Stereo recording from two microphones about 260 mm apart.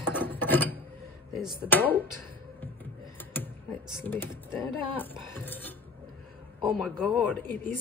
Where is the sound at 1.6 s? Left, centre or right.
Centre.